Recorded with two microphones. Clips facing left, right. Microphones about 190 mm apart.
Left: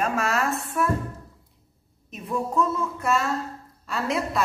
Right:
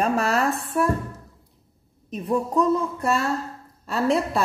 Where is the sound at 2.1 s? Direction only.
35° right (ahead or behind).